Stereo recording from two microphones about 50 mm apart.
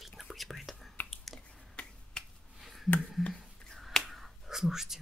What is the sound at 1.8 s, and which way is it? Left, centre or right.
Finger snapping, centre.